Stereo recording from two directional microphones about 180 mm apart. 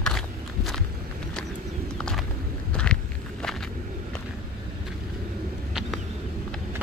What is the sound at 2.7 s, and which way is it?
Walk, 5° left (ahead or behind).